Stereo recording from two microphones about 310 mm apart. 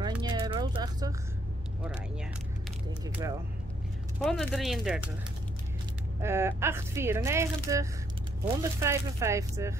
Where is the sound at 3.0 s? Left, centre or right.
Centre.